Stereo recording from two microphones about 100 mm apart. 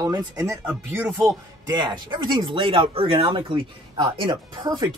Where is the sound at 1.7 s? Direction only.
50° right (ahead or behind).